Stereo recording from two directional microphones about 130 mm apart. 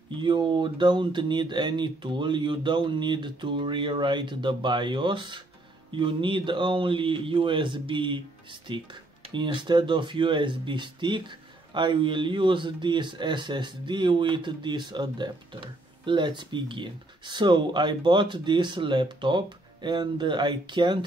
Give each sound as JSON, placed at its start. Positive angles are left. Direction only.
{"t": 0.2, "sound": "speech", "side_deg": -35}